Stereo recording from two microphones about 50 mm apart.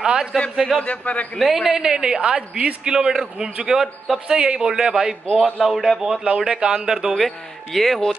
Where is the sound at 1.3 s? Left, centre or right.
Centre.